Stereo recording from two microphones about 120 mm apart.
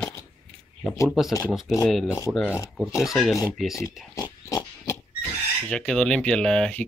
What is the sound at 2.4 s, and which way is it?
Speech, 25° left (ahead or behind).